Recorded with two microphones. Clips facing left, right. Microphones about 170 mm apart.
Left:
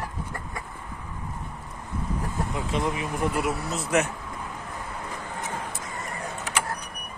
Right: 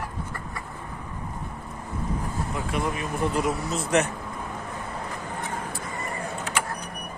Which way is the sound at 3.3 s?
5° left (ahead or behind).